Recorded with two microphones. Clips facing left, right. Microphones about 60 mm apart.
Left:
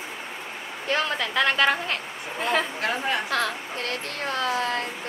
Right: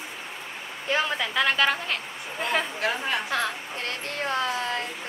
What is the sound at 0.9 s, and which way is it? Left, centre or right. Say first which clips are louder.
A woman's voice: even; centre.